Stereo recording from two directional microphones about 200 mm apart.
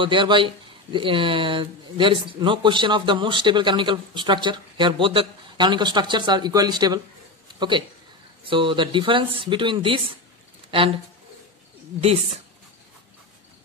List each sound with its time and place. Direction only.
0.0 s a man's voice: 25° right (ahead or behind)
12.0 s speech: 30° right (ahead or behind)